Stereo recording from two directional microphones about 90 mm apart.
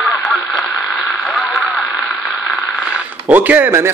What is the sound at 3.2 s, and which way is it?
Speech, 20° right (ahead or behind).